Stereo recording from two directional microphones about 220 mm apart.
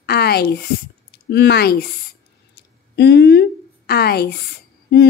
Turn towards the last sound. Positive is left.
turn(degrees=50)  # may be behind; listen again after turning